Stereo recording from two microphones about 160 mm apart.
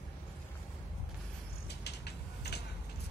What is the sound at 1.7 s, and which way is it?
Mechanisms, 90° left.